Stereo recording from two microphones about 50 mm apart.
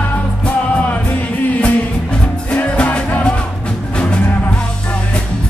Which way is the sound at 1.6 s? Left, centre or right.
Left.